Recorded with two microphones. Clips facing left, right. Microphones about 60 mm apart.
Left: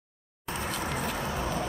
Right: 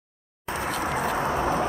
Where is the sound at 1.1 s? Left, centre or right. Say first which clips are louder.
Right 7 dB; right.